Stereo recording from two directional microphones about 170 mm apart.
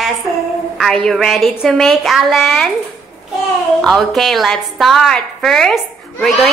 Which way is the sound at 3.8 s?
5° left (ahead or behind).